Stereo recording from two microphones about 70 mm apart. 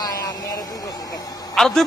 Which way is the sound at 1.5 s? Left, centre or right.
Centre.